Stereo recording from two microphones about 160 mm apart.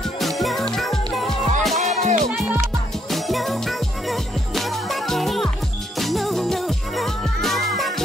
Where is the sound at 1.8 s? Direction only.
50° right (ahead or behind).